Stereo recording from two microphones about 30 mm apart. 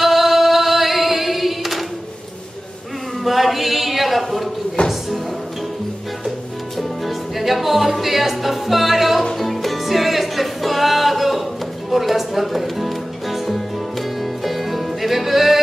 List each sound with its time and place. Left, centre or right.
0.0 s singing: centre
3.3 s a sound: centre
4.8 s music: left
6.8 s music: centre